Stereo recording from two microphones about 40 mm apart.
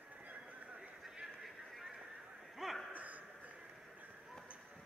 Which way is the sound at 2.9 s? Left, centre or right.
Right.